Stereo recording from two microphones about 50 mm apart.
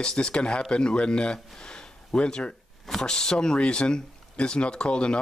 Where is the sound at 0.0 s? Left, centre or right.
Centre.